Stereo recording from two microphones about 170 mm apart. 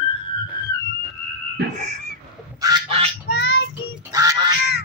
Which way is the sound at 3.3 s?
90° left.